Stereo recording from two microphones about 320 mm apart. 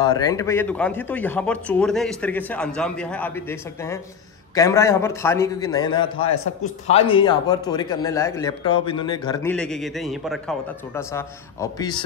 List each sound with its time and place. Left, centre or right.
0.0 s a man's voice: centre
6.3 s a man's voice: left
6.9 s a man's voice: centre